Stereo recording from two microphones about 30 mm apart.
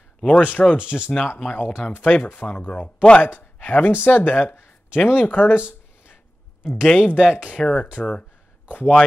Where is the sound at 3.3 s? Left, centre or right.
Left.